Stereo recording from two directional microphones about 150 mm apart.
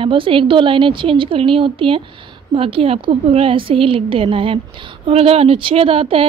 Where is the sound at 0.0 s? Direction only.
35° right (ahead or behind).